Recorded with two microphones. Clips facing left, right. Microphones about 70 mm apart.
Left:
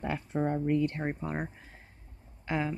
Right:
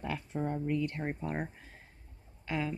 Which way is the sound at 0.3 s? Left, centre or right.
Left.